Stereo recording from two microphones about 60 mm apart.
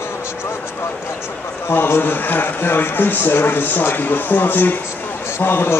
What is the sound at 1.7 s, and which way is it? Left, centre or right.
A man's voice, left.